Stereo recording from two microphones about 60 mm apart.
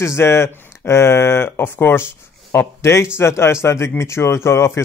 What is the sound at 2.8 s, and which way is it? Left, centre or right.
Speech, left.